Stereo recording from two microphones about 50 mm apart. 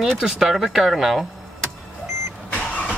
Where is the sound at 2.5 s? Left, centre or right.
Left.